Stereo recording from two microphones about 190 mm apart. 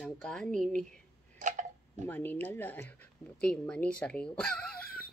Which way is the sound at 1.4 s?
40° right (ahead or behind).